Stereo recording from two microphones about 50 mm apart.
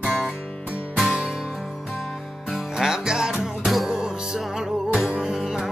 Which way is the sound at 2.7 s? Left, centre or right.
Centre.